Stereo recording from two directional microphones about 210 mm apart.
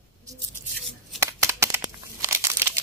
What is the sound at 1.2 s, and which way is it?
Crumpling, 15° right (ahead or behind).